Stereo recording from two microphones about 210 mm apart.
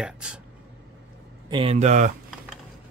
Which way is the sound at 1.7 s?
35° right (ahead or behind).